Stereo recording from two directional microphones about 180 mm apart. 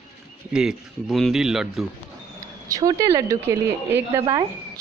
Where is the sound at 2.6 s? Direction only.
20° right (ahead or behind).